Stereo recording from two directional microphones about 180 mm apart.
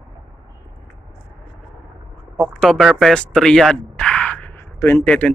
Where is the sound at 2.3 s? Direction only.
Centre (ahead or behind).